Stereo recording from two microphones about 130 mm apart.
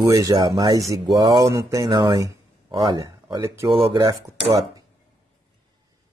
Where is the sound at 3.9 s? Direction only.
30° right (ahead or behind).